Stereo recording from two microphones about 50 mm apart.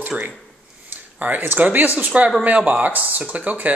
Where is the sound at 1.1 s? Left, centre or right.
Right.